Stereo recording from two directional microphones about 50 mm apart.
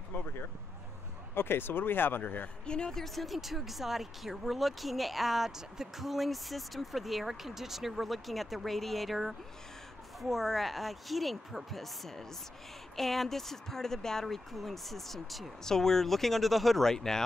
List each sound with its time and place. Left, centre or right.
0.1 s a sound: left
1.3 s speech: left
2.6 s speech: centre
3.0 s speech: centre